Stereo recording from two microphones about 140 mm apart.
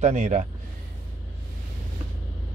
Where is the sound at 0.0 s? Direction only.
55° right (ahead or behind).